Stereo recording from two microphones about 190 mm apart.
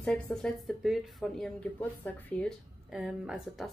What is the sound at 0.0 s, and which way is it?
Speech, 5° left (ahead or behind).